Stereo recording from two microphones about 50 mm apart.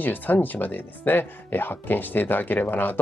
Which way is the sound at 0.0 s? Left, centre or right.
Left.